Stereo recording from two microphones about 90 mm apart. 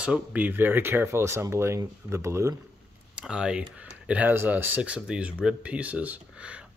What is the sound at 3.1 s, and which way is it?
Speech, 10° right (ahead or behind).